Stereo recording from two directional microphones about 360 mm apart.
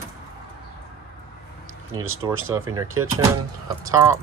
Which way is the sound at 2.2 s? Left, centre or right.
Centre.